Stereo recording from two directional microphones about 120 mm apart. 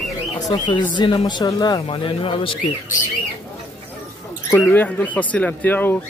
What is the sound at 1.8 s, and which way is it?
Speech, 45° left (ahead or behind).